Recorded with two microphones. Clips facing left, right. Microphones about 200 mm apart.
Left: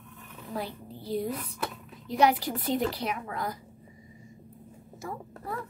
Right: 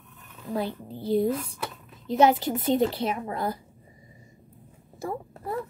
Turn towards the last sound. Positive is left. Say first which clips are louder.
# right 5 dB
turn(degrees=-30)  # may be behind; listen again after turning